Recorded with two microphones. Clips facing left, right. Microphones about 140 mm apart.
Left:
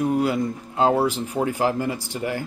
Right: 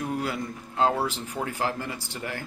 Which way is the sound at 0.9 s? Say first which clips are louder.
Left 7 dB; 35° left (ahead or behind).